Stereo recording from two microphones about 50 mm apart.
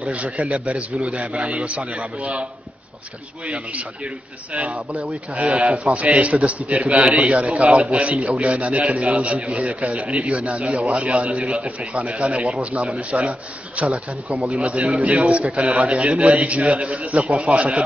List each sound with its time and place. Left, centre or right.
0.0 s a man's voice: right
3.4 s a man's voice: right
5.3 s a man's voice: right